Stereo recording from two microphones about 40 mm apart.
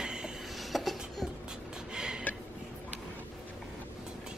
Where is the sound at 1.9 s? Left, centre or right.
Right.